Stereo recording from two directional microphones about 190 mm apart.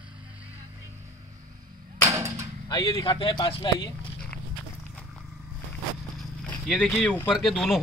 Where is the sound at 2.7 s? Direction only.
20° left (ahead or behind).